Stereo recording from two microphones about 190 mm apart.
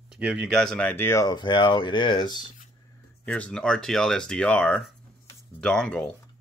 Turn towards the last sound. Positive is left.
turn(degrees=5)  # may be behind; listen again after turning